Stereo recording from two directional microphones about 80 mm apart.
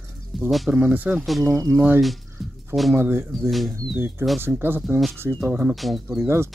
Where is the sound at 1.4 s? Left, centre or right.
Right.